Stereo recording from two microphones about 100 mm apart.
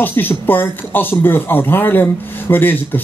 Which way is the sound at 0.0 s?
20° left (ahead or behind).